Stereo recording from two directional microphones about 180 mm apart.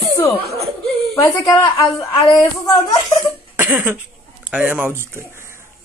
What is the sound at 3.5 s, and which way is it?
Cough, 10° right (ahead or behind).